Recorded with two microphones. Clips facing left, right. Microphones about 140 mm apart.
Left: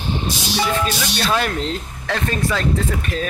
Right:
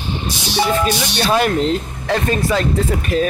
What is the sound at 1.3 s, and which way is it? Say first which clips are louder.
Speech: right 5 dB; 10° right (ahead or behind).